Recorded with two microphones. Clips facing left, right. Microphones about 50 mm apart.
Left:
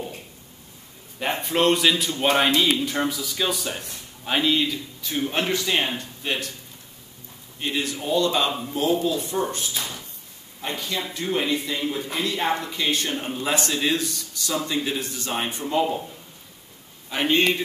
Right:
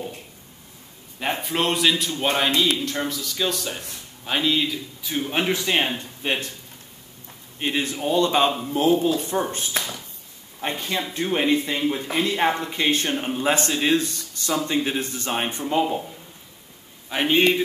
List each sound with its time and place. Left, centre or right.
1.2 s a man's voice: centre; by 6.5 s right
7.5 s a man's voice: right
9.8 s a sound: right
10.6 s speech: right
13.1 s speech: centre
13.4 s a man's voice: right
15.6 s speech: centre
17.3 s speech: centre